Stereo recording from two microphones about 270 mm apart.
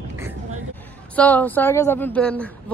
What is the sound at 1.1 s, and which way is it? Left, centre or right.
Speech, centre.